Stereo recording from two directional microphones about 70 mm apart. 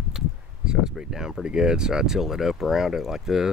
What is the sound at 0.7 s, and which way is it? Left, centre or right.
Speech, centre.